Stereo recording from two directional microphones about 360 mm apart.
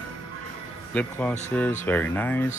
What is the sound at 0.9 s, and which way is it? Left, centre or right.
Speech, centre.